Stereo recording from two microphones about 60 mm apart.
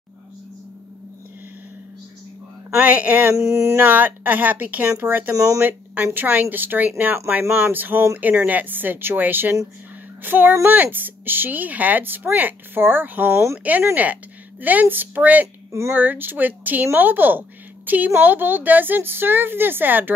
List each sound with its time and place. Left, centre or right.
2.8 s speech: right
3.3 s a sound: right
3.8 s a woman's voice: right
5.3 s speech: right
5.6 s a woman's voice: right
14.6 s speech: right
15.4 s speech: right
15.9 s a woman's voice: right